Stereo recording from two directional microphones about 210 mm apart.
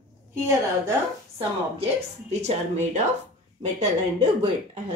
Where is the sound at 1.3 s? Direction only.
30° right (ahead or behind).